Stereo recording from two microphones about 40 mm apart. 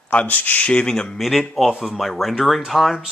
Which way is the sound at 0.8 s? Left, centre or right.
Centre.